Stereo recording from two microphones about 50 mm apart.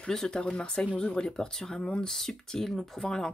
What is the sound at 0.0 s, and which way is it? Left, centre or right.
Speech, centre.